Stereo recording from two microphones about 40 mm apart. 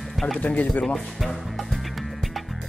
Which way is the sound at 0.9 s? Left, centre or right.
Centre.